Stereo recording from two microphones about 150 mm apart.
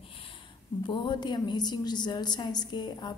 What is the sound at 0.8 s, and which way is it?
A woman's voice, 30° left (ahead or behind).